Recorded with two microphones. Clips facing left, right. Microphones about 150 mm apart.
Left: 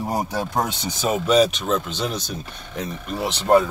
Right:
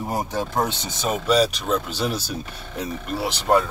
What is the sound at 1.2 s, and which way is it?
Speech, 5° right (ahead or behind).